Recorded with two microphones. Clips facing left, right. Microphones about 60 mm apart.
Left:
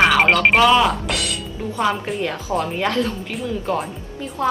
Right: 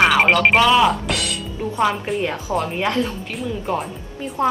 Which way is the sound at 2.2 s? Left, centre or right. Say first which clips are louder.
Left 2 dB; right.